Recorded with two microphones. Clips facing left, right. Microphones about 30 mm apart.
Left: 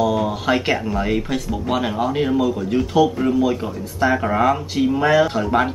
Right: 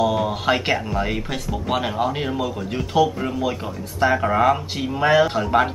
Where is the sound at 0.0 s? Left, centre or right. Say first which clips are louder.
Left 1 dB; centre.